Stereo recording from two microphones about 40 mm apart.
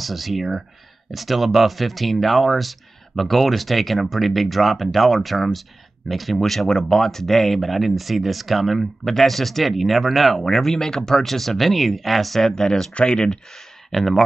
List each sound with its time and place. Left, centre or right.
0.0 s speech: centre
12.9 s speech: left
13.9 s speech: centre